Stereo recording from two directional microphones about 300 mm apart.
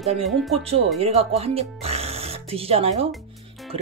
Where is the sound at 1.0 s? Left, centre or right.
Centre.